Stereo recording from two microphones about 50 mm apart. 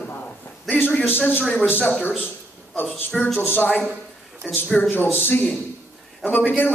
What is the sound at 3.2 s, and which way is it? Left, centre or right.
A man's voice, left.